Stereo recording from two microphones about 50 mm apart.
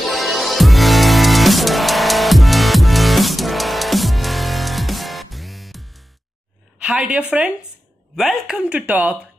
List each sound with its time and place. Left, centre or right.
0.0 s music: centre
6.8 s a sound: right
8.2 s speech: centre
8.6 s speech: right